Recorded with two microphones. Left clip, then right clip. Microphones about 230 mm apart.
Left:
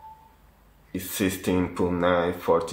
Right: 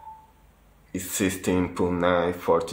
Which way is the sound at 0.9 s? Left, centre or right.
Centre.